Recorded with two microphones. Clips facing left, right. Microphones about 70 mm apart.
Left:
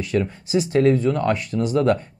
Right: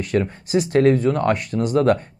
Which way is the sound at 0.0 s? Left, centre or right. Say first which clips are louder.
Right 1 dB; right.